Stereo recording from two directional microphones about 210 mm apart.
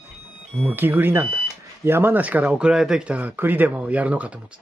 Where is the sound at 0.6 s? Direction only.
10° right (ahead or behind).